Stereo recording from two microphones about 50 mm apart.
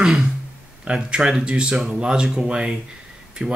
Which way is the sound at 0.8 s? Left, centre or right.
Right.